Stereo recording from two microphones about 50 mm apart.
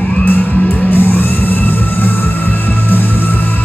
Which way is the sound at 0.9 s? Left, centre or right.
Left.